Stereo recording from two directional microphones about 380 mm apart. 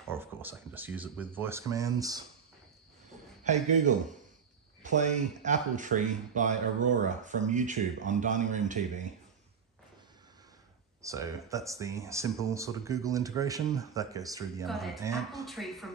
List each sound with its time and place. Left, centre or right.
0.1 s speech: centre
3.4 s speech: centre
11.0 s speech: centre